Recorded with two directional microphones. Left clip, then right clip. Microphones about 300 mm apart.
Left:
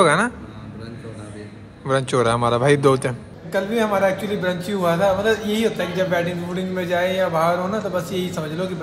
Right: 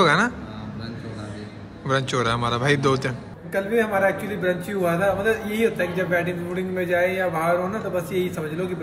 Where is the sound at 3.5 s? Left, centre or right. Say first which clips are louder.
Left 2 dB; centre.